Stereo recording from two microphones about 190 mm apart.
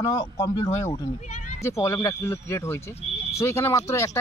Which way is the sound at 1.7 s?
15° left (ahead or behind).